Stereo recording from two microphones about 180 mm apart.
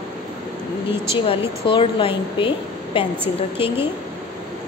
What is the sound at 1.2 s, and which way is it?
A woman's voice, 30° left (ahead or behind).